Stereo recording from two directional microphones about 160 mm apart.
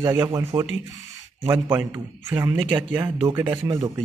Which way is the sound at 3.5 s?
25° right (ahead or behind).